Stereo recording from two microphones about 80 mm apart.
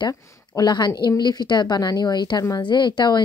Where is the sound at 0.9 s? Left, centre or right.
Left.